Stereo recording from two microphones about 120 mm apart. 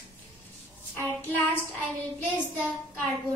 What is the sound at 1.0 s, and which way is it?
Child singing, 15° left (ahead or behind).